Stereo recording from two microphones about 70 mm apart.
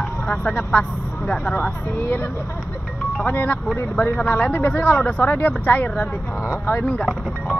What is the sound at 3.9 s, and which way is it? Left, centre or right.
A woman's voice, centre.